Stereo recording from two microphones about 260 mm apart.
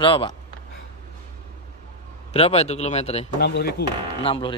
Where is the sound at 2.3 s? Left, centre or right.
Left.